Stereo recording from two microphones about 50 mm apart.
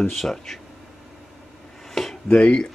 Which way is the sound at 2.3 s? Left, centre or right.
Left.